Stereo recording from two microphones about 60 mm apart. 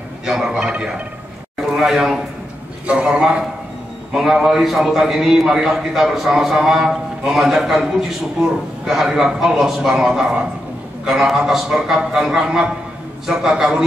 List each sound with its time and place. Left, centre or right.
0.2 s a man's voice: centre
2.9 s a man's voice: centre